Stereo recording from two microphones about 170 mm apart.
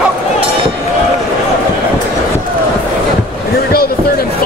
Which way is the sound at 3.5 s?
65° left (ahead or behind).